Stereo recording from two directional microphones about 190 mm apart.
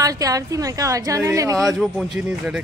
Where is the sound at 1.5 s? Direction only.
Centre (ahead or behind).